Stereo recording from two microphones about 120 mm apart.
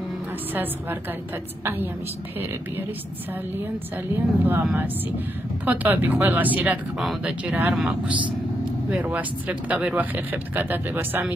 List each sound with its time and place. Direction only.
1.6 s speech: 20° right (ahead or behind)
4.4 s speech: 15° right (ahead or behind)
5.7 s speech: 15° right (ahead or behind)